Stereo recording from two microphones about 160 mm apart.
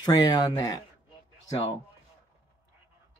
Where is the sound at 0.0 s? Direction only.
25° left (ahead or behind).